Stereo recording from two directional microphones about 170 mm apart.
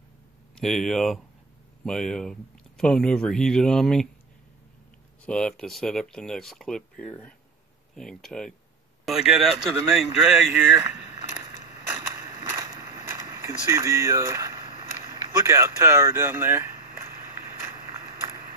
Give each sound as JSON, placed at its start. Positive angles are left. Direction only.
{"t": 0.6, "sound": "speech", "side_deg": 0}
{"t": 5.2, "sound": "speech", "side_deg": 5}
{"t": 12.5, "sound": "a sound", "side_deg": -20}